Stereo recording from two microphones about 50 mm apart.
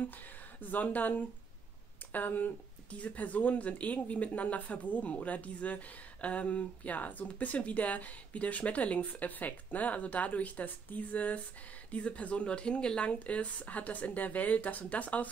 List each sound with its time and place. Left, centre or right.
0.6 s speech: left